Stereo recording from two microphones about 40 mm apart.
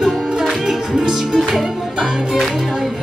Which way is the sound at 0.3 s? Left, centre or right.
Centre.